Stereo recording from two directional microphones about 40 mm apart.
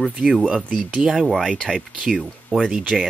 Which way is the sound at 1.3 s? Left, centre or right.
Centre.